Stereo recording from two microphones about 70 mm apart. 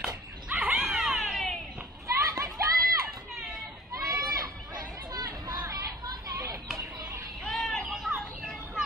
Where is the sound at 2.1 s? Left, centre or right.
Right.